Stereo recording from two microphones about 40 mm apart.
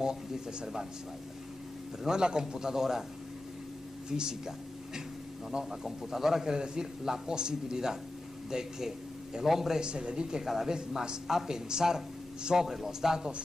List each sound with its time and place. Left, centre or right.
0.0 s a man's voice: centre
2.0 s a man's voice: centre
4.1 s a man's voice: centre
5.7 s a man's voice: centre
9.8 s speech: right
10.4 s a man's voice: centre